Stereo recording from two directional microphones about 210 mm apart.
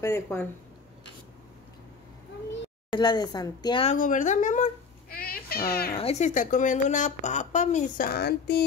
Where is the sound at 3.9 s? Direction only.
40° left (ahead or behind).